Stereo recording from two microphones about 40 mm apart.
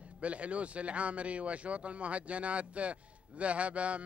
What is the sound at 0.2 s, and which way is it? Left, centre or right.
Speech, right.